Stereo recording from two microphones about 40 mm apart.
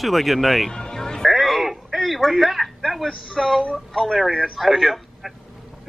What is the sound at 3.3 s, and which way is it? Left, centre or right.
A man's voice, centre.